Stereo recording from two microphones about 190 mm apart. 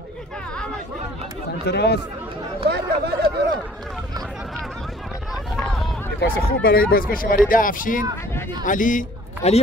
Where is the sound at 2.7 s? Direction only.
60° right (ahead or behind).